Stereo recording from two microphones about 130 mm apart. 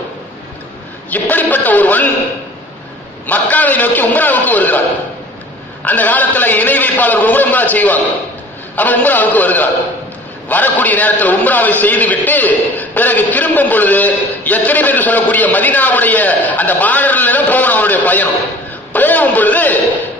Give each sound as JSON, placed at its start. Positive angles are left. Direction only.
{"t": 1.1, "sound": "a man's voice", "side_deg": 10}
{"t": 3.3, "sound": "a man's voice", "side_deg": 10}
{"t": 5.9, "sound": "a man's voice", "side_deg": 15}